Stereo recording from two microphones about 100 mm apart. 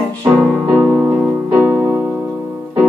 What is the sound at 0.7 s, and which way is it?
Music, 15° right (ahead or behind).